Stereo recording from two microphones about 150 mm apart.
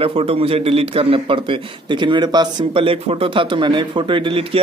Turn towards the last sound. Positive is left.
turn(degrees=-35)  # may be behind; listen again after turning